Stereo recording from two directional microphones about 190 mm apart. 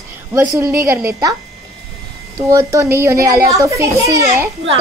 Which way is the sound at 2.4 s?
15° right (ahead or behind).